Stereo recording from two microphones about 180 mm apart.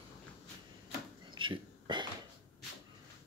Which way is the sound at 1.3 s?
25° right (ahead or behind).